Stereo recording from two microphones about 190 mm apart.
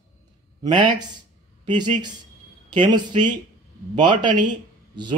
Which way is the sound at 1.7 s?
25° right (ahead or behind).